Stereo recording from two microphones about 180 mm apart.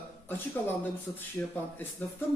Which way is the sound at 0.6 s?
10° left (ahead or behind).